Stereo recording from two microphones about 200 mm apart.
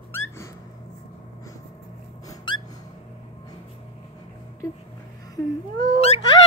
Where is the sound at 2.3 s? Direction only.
20° left (ahead or behind).